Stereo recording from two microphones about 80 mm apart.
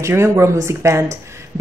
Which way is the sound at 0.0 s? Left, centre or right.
Right.